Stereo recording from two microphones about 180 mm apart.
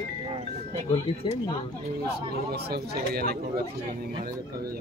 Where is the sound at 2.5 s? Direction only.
60° right (ahead or behind).